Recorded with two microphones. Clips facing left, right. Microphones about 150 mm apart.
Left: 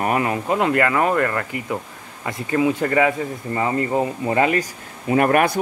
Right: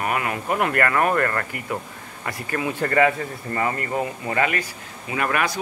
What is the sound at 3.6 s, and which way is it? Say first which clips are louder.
Speech: left 4 dB; 20° left (ahead or behind).